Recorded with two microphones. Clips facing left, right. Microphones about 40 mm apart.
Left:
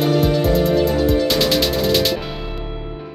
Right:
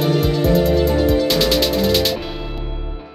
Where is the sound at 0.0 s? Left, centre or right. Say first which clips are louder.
Left 1 dB; centre.